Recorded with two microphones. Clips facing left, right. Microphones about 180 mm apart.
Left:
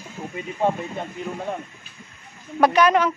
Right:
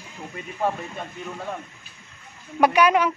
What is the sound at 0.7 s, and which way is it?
Speech, 20° left (ahead or behind).